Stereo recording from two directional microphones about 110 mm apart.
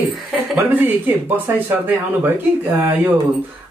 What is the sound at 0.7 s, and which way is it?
Speech, 15° right (ahead or behind).